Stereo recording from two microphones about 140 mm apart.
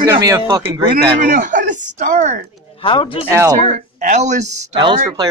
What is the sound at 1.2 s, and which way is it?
Speech, 65° right (ahead or behind).